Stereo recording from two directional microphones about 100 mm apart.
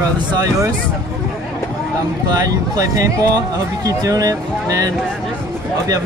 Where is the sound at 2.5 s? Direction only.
35° right (ahead or behind).